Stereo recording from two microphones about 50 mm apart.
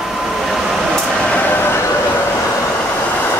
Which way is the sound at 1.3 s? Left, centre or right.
Left.